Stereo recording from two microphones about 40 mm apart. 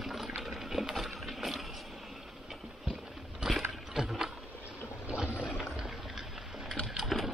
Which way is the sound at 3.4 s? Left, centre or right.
Centre.